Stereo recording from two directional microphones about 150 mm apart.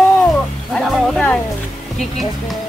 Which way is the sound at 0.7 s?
Centre (ahead or behind).